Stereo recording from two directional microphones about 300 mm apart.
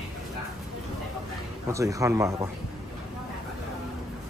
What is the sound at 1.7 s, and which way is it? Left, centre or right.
Speech, centre.